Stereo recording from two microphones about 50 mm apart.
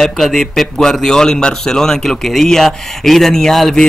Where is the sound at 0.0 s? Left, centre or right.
Centre.